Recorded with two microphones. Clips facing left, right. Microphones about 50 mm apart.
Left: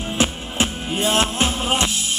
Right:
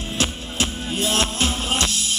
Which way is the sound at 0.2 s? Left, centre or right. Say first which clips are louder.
Left 3 dB; left.